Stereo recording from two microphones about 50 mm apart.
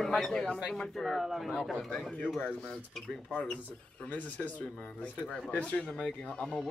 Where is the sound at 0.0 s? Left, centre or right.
Centre.